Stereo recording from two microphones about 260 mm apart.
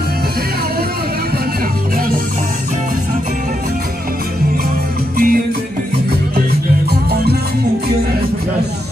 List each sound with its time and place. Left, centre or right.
5.1 s music: right
6.9 s music: right